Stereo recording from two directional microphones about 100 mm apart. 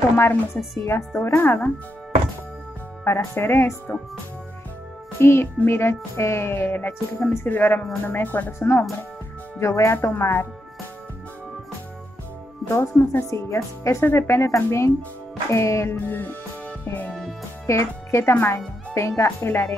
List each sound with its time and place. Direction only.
0.8 s music: 25° left (ahead or behind)
3.0 s music: 25° left (ahead or behind)
5.2 s music: 25° left (ahead or behind)
12.6 s music: 25° left (ahead or behind)
13.3 s music: 30° left (ahead or behind)
16.1 s music: 20° left (ahead or behind)
17.6 s speech: 30° left (ahead or behind)
18.9 s music: 30° left (ahead or behind)